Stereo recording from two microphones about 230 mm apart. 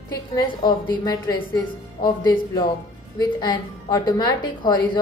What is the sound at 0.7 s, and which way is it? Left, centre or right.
A woman's voice, centre.